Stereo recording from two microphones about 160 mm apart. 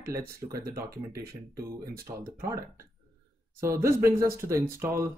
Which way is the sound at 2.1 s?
35° right (ahead or behind).